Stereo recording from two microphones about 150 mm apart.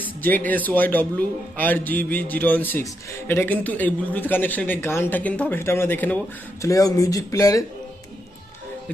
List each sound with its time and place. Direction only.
0.0 s speech: 10° left (ahead or behind)
6.6 s speech: 20° left (ahead or behind)